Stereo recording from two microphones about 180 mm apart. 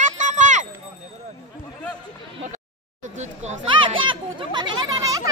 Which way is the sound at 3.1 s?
35° right (ahead or behind).